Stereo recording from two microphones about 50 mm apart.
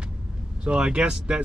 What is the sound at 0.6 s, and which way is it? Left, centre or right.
Speech, centre.